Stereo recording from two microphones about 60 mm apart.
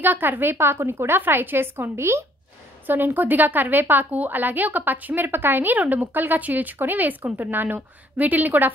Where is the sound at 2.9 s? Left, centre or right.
Right.